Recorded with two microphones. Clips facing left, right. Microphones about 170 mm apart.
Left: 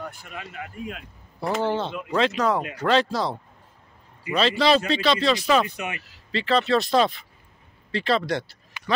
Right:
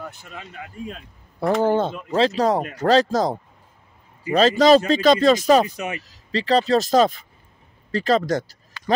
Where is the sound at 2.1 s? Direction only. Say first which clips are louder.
Right 4 dB; 35° right (ahead or behind).